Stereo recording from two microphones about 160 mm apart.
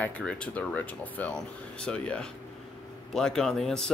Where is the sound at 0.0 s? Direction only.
5° left (ahead or behind).